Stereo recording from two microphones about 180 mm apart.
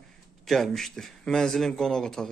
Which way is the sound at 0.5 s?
Centre (ahead or behind).